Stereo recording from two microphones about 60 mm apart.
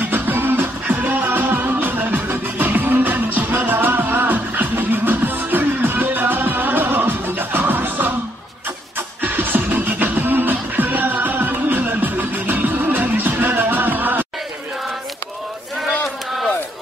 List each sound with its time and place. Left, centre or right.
0.0 s music: right
9.2 s music: right